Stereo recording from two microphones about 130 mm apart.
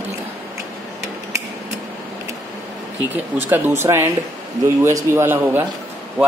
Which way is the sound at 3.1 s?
15° right (ahead or behind).